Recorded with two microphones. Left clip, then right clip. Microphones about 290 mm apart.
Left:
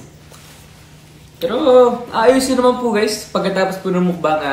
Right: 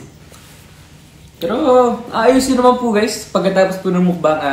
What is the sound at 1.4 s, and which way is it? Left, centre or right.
Speech, centre.